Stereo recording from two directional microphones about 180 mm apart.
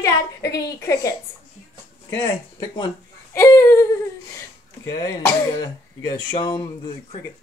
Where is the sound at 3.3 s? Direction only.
15° left (ahead or behind).